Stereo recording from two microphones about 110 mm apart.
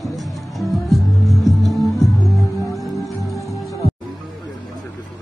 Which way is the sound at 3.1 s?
30° left (ahead or behind).